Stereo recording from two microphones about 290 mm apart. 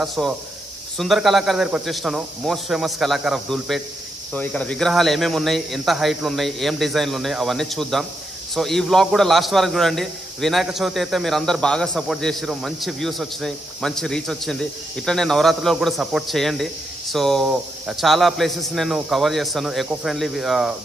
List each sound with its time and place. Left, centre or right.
0.0 s a man's voice: centre